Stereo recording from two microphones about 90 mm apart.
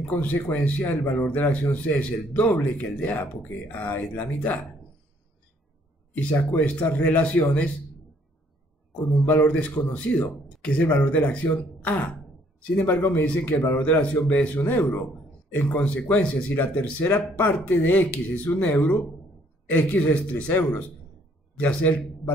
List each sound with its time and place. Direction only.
0.0 s a man's voice: 15° left (ahead or behind)
6.1 s a man's voice: 20° left (ahead or behind)
8.9 s a man's voice: 20° left (ahead or behind)